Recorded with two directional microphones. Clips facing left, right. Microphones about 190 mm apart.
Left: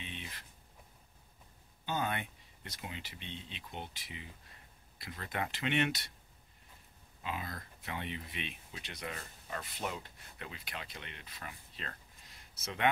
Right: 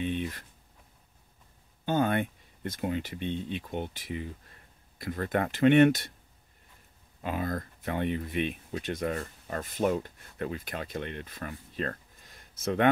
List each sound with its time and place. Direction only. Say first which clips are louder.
0.0 s a sound: right 16 dB; 50° right (ahead or behind)
1.9 s speech: right 10 dB; 50° right (ahead or behind)
7.2 s speech: right 10 dB; 50° right (ahead or behind)